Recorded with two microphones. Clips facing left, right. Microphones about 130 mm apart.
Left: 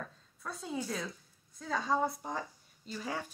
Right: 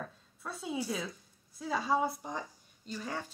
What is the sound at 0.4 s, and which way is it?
A woman's voice, 5° right (ahead or behind).